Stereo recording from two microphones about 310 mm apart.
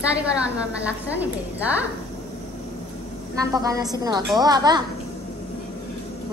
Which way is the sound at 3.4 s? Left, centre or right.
Centre.